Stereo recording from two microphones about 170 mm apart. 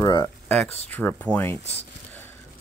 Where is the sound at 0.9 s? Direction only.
10° left (ahead or behind).